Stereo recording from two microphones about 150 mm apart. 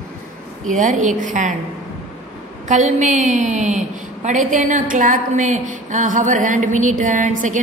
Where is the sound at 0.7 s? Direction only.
55° right (ahead or behind).